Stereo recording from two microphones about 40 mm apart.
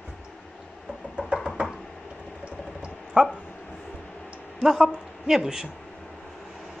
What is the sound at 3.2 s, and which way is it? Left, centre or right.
Dog, right.